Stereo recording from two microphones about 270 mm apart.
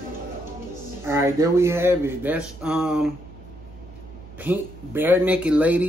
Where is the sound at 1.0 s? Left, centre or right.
Centre.